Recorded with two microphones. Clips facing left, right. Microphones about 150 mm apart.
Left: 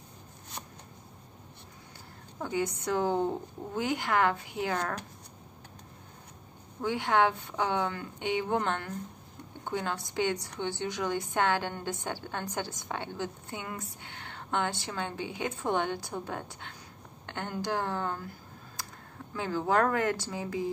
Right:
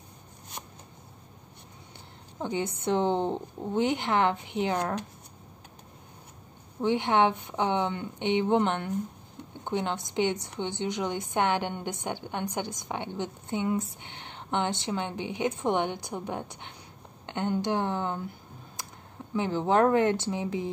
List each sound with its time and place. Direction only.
2.4 s a woman's voice: 25° right (ahead or behind)
6.8 s a woman's voice: 20° right (ahead or behind)
18.8 s a sound: 20° right (ahead or behind)
19.3 s a woman's voice: 20° right (ahead or behind)